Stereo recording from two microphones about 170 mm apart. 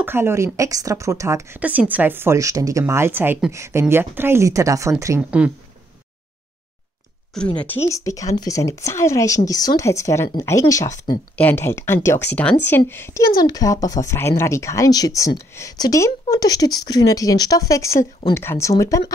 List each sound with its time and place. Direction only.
0.0 s speech: 15° right (ahead or behind)
7.9 s speech: 20° left (ahead or behind)